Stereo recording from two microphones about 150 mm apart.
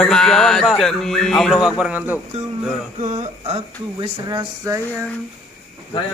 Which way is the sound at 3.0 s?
50° right (ahead or behind).